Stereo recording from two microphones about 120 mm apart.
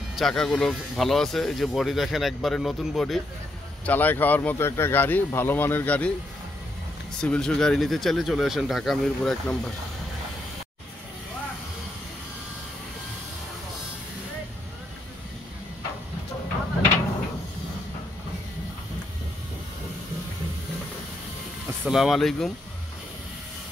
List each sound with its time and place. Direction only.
0.1 s speech: 5° left (ahead or behind)
3.8 s speech: 15° left (ahead or behind)
7.2 s speech: 5° left (ahead or behind)
21.8 s speech: 5° right (ahead or behind)